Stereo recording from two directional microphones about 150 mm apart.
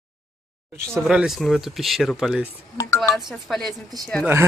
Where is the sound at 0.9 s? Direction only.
5° right (ahead or behind).